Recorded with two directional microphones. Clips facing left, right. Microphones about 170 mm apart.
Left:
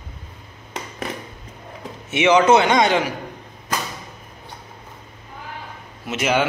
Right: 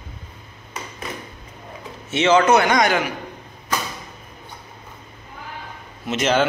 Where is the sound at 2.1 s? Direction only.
15° left (ahead or behind).